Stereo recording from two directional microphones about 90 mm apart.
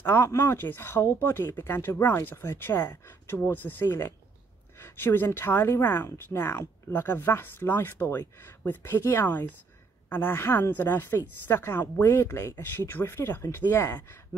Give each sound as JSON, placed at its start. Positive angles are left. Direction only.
{"t": 0.0, "sound": "a woman's voice", "side_deg": 30}